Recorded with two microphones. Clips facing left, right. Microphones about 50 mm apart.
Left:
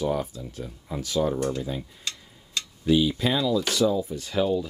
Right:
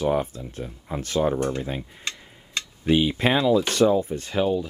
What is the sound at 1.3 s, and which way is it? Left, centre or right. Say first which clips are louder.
Speech: right 2 dB; right.